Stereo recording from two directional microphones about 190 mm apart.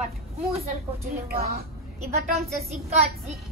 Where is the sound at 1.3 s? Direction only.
55° right (ahead or behind).